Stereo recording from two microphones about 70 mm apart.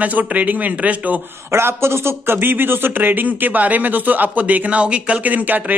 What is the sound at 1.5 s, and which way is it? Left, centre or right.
Speech, right.